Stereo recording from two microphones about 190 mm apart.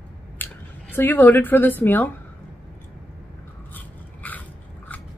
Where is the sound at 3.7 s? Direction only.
10° left (ahead or behind).